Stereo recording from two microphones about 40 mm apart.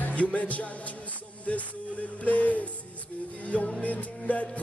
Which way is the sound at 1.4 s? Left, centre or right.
Left.